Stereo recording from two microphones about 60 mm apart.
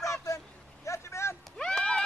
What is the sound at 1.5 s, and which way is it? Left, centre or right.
Horse, centre.